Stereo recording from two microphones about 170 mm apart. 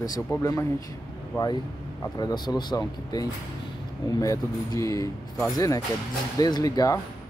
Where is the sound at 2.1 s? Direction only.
25° left (ahead or behind).